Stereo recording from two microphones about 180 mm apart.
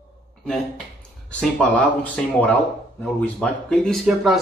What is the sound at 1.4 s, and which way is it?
Speech, 10° left (ahead or behind).